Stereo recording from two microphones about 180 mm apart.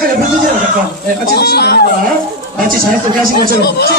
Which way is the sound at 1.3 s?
65° left (ahead or behind).